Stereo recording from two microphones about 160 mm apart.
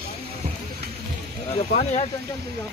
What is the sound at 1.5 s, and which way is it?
Speech, 40° left (ahead or behind).